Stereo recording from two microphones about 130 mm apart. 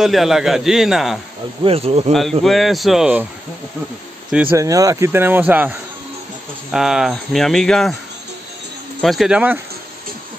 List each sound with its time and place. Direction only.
0.0 s a man's voice: centre (ahead or behind)
1.6 s speech: 50° right (ahead or behind)
2.4 s a man's voice: centre (ahead or behind)
4.3 s speech: 10° right (ahead or behind)
4.6 s a man's voice: 25° right (ahead or behind); by 7.9 s 5° left (ahead or behind)
9.0 s a man's voice: centre (ahead or behind)